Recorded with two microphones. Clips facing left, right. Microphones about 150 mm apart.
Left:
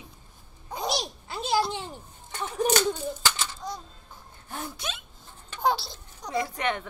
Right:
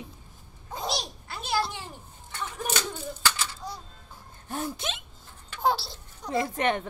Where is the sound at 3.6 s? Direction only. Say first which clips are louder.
Left 3 dB; 10° right (ahead or behind).